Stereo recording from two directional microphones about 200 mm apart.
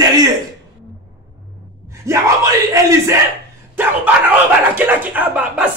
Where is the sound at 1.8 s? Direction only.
15° right (ahead or behind).